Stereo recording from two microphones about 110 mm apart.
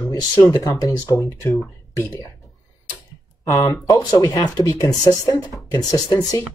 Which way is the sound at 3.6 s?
35° left (ahead or behind).